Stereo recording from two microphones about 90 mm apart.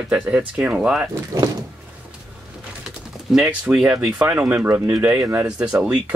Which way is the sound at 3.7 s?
5° right (ahead or behind).